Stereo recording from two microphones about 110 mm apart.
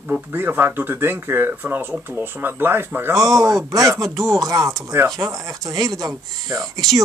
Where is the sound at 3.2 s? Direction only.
30° right (ahead or behind).